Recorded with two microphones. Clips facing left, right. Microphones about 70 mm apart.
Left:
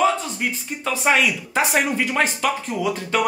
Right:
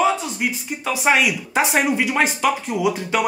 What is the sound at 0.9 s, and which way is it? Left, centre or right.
Speech, centre.